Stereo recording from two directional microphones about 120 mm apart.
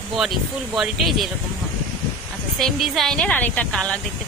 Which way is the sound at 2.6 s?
Centre (ahead or behind).